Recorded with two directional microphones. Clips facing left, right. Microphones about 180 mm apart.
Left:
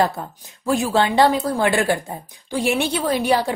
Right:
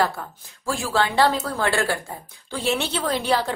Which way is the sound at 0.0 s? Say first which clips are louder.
Left 3 dB; 20° left (ahead or behind).